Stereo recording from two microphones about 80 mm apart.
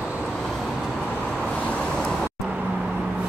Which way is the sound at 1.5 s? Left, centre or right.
Centre.